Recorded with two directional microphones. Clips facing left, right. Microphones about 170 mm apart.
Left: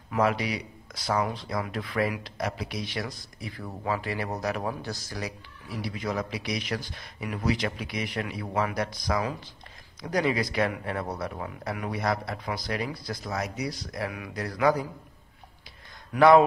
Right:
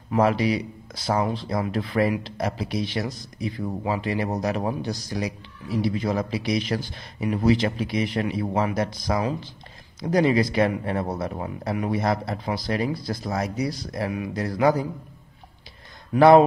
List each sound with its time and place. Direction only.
0.1 s speech: 30° right (ahead or behind)
16.2 s speech: 30° right (ahead or behind)